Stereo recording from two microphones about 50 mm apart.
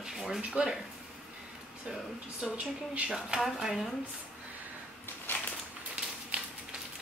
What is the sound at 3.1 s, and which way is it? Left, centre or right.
Speech, centre.